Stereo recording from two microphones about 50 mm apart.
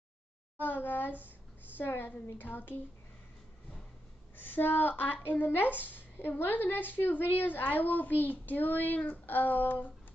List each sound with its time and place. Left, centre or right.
0.6 s a child's voice: left
4.4 s a woman's voice: left